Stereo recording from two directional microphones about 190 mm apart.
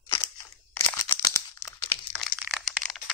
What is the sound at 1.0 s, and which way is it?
Crumpling, 15° left (ahead or behind).